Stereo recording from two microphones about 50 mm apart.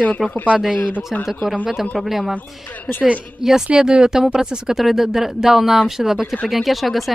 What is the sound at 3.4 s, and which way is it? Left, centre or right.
A woman's voice, centre.